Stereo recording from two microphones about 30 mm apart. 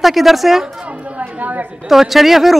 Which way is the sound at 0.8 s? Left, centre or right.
Right.